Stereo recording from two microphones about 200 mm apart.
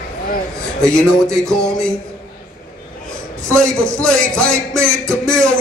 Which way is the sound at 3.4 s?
5° left (ahead or behind).